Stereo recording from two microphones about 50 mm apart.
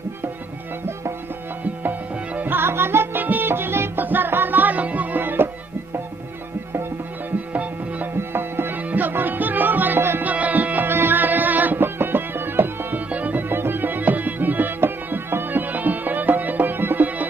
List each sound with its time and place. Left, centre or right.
1.8 s tabla: right
2.6 s music: right
7.2 s music: right
8.2 s music: right
10.2 s music: right
10.9 s music: right
13.1 s music: right